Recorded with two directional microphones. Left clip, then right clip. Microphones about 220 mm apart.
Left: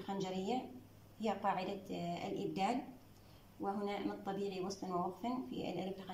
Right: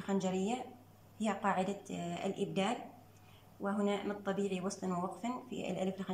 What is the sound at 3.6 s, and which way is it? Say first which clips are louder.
Speech: right 4 dB; 25° left (ahead or behind).